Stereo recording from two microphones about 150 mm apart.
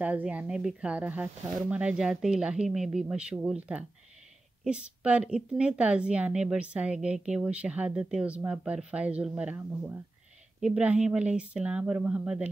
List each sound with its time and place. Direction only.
0.0 s a woman's voice: 10° right (ahead or behind)